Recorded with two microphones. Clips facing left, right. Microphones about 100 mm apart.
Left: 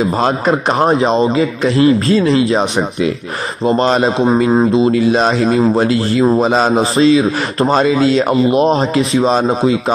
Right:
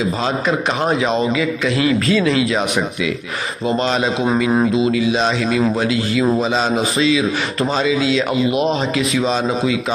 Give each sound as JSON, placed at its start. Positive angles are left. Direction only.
{"t": 0.2, "sound": "a man's voice", "side_deg": 40}
{"t": 3.6, "sound": "a man's voice", "side_deg": 40}
{"t": 6.7, "sound": "a man's voice", "side_deg": 35}